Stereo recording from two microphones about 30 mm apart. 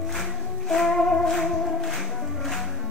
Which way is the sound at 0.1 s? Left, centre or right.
Centre.